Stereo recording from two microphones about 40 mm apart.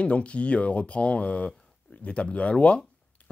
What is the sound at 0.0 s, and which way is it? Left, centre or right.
Speech, left.